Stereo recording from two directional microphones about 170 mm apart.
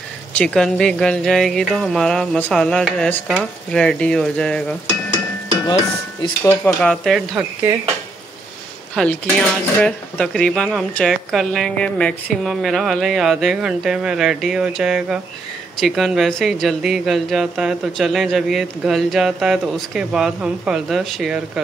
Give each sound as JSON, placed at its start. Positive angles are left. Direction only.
{"t": 0.3, "sound": "speech", "side_deg": 5}
{"t": 6.4, "sound": "stir", "side_deg": 15}
{"t": 6.8, "sound": "speech", "side_deg": 0}
{"t": 8.9, "sound": "speech", "side_deg": 5}